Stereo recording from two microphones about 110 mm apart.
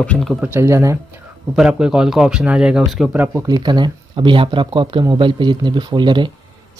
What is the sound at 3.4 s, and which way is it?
Speech, 40° right (ahead or behind).